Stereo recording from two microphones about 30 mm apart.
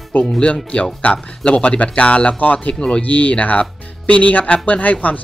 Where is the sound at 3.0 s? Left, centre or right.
Left.